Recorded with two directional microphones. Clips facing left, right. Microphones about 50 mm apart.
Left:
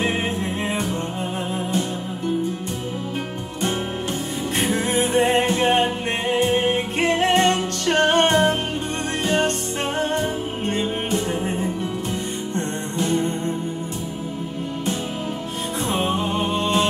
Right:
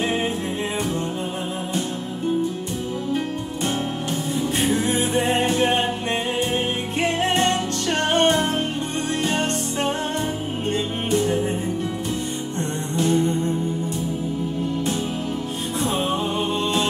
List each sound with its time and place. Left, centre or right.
4.6 s music: left
15.8 s music: left